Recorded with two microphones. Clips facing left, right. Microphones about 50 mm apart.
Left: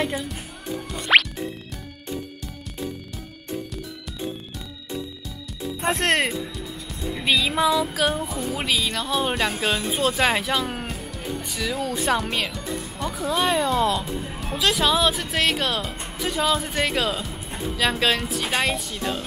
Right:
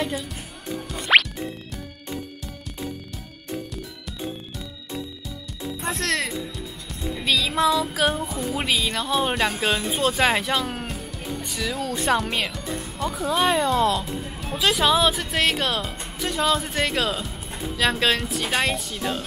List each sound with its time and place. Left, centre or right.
0.9 s music: centre
5.8 s speech: left
7.2 s speech: centre